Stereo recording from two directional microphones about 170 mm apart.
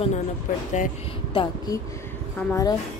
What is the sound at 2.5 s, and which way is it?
Speech, 20° left (ahead or behind).